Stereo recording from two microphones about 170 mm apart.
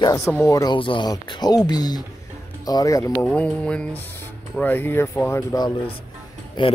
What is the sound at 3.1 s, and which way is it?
A man's voice, 5° left (ahead or behind).